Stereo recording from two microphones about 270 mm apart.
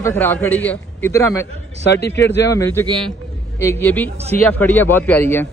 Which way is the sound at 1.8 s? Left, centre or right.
Left.